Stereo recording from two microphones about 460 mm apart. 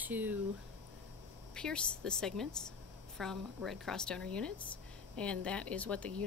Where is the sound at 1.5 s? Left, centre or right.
Centre.